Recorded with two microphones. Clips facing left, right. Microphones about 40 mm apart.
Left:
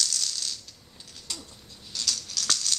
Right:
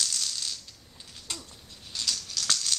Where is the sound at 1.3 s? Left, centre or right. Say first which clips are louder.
Even; right.